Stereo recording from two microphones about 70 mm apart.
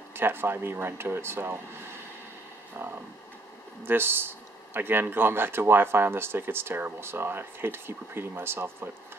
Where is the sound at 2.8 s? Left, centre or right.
Right.